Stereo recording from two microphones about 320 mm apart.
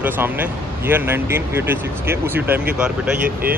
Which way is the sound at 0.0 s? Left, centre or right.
Centre.